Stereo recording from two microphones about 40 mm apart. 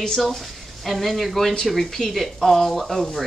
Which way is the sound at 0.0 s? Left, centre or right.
Centre.